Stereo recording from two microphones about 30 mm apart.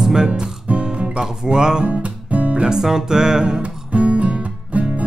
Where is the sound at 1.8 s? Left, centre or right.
Right.